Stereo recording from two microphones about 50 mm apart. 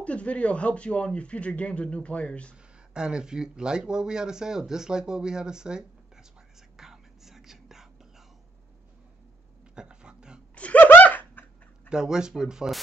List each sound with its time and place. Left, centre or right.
0.0 s speech: left
2.5 s speech: centre
6.8 s whispering: centre
9.8 s a sound: centre
10.5 s laughter: left
11.0 s a sound: left
11.9 s speech: centre